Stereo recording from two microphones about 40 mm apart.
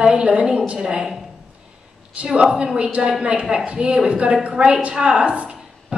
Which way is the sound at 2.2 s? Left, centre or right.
Right.